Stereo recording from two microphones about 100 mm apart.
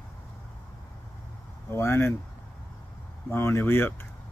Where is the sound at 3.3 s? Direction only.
25° left (ahead or behind).